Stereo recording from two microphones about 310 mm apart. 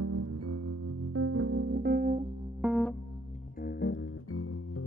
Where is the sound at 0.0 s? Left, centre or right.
Right.